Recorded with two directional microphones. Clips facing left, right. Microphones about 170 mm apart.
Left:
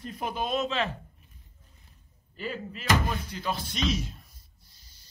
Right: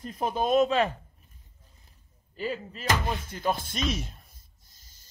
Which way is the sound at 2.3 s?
40° right (ahead or behind).